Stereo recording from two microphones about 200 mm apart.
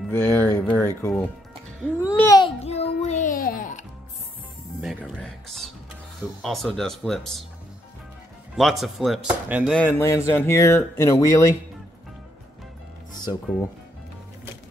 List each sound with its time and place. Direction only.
0.1 s speech: 10° left (ahead or behind)
2.2 s a sound: 20° left (ahead or behind)
3.0 s music: 35° left (ahead or behind)
4.8 s speech: centre (ahead or behind)
8.5 s speech: centre (ahead or behind)
9.8 s speech: 10° left (ahead or behind)